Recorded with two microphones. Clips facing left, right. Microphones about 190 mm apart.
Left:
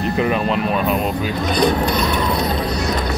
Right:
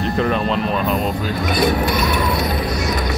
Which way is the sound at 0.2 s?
5° left (ahead or behind).